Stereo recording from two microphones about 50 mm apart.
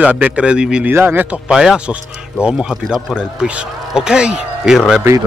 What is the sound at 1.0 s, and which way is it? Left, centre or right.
Speech, right.